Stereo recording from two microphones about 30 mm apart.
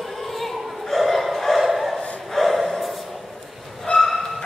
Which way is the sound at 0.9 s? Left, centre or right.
Centre.